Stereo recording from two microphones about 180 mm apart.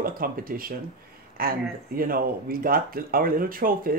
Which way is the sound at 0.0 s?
55° right (ahead or behind).